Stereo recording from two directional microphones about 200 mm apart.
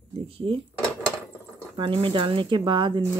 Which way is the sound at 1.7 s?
25° right (ahead or behind).